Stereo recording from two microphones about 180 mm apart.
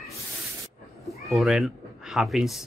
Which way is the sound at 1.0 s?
Centre (ahead or behind).